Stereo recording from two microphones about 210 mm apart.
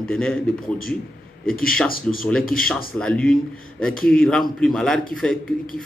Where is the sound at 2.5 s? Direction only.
40° left (ahead or behind).